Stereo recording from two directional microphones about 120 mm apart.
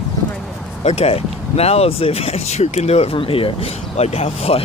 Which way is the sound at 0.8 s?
60° left (ahead or behind).